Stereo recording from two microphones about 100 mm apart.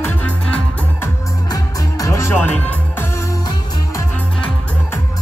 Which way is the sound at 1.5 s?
30° left (ahead or behind).